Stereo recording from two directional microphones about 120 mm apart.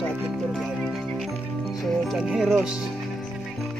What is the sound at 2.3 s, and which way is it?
Speech, 5° right (ahead or behind).